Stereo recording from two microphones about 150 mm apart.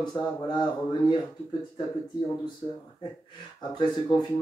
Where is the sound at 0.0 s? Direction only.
30° left (ahead or behind).